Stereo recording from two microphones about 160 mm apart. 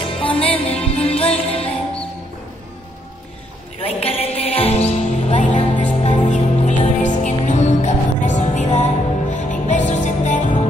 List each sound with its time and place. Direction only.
0.0 s music: 35° left (ahead or behind)
3.8 s music: 35° left (ahead or behind)